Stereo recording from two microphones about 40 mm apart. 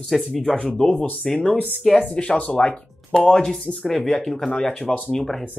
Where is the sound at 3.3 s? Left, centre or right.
Left.